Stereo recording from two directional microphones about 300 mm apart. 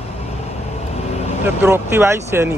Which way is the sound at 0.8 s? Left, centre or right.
Left.